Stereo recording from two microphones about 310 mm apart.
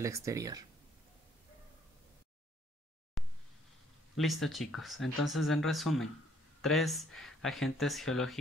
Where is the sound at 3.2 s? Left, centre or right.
Centre.